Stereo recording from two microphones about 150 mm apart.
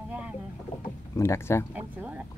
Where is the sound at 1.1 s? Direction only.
20° left (ahead or behind).